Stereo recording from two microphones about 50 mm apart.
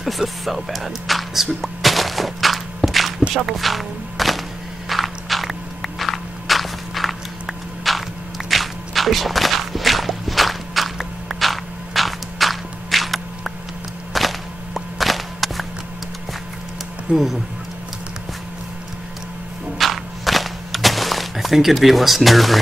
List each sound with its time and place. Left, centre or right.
0.0 s music: centre
4.8 s walk: centre
14.1 s whip: centre
17.1 s speech: right
19.8 s a sound: centre